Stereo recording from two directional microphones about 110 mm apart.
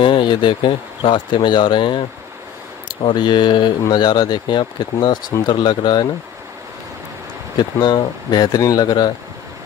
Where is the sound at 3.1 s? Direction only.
45° left (ahead or behind).